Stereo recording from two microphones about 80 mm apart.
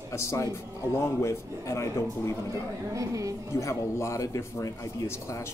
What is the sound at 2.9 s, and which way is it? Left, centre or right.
Speech, right.